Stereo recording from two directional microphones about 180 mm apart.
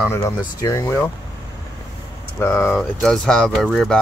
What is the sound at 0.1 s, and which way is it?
Speech, 20° left (ahead or behind).